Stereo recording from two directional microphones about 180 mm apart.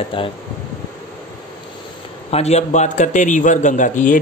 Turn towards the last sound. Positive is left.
turn(degrees=45)  # may be behind; listen again after turning